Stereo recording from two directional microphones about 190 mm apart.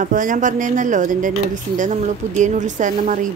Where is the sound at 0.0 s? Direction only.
45° right (ahead or behind).